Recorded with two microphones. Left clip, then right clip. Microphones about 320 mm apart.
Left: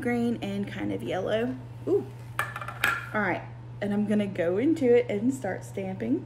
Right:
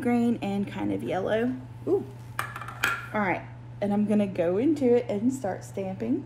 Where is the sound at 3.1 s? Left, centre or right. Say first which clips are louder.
Right 1 dB; right.